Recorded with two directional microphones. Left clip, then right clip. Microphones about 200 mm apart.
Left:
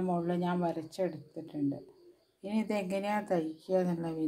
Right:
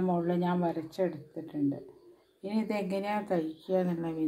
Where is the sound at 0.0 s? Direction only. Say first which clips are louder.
Right 3 dB; centre (ahead or behind).